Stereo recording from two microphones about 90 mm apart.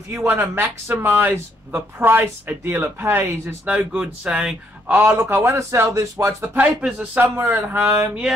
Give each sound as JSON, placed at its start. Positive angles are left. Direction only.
{"t": 0.3, "sound": "speech", "side_deg": -25}
{"t": 3.7, "sound": "speech", "side_deg": -10}
{"t": 5.0, "sound": "speech", "side_deg": -25}
{"t": 6.5, "sound": "speech", "side_deg": -15}